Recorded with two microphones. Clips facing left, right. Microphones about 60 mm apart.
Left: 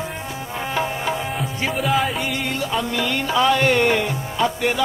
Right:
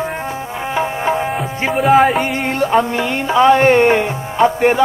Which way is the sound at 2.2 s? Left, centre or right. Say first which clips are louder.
Right 7 dB; right.